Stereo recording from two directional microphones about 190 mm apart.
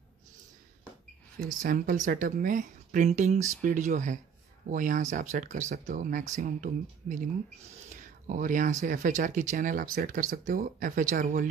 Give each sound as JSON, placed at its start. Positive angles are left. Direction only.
{"t": 1.6, "sound": "speech", "side_deg": -45}